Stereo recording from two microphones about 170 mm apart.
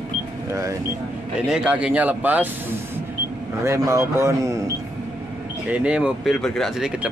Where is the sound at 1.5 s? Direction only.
5° right (ahead or behind).